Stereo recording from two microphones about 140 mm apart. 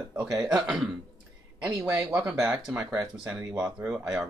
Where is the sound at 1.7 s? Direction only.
25° right (ahead or behind).